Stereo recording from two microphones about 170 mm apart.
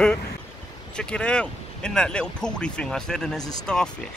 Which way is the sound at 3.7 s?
5° left (ahead or behind).